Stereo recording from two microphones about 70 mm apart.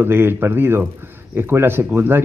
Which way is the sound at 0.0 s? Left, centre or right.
Right.